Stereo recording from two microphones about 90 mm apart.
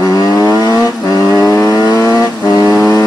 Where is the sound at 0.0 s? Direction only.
40° left (ahead or behind).